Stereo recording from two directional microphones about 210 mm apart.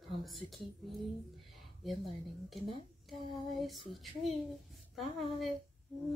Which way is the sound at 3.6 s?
Centre (ahead or behind).